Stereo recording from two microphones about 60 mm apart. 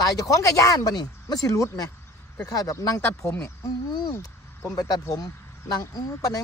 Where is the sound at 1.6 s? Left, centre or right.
Left.